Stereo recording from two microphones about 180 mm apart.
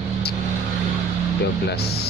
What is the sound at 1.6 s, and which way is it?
Speech, 60° left (ahead or behind).